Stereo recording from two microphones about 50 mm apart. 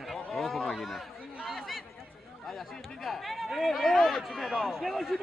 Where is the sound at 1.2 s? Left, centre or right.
Right.